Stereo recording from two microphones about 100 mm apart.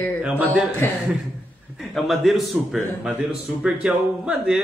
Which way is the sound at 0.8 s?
20° left (ahead or behind).